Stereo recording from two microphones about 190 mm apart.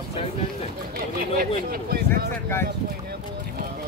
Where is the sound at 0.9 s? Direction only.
55° right (ahead or behind).